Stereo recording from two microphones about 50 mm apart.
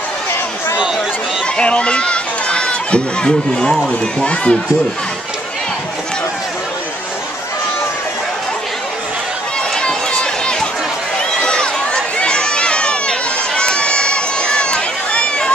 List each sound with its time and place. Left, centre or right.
1.6 s speech: left
9.8 s run: centre